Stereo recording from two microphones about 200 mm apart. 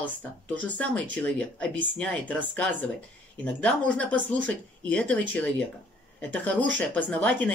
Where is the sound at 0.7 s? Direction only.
5° left (ahead or behind).